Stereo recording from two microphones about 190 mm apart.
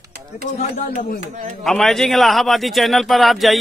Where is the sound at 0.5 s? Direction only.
35° left (ahead or behind).